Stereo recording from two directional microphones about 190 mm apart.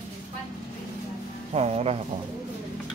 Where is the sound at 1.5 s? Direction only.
35° right (ahead or behind).